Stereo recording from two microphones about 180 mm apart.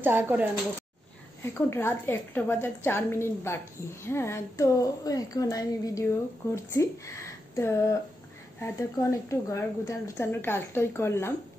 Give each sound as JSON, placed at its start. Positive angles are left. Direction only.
{"t": 0.0, "sound": "speech", "side_deg": -10}
{"t": 1.4, "sound": "a woman's voice", "side_deg": 15}